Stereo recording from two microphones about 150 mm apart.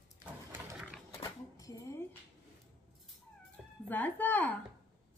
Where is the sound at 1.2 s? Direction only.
25° left (ahead or behind).